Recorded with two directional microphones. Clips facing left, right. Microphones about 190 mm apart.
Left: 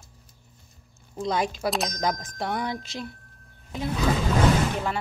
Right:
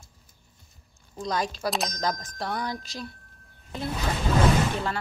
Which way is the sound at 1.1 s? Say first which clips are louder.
Left 3 dB; 25° left (ahead or behind).